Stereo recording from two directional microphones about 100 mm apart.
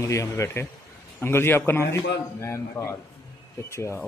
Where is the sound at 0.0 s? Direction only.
30° left (ahead or behind).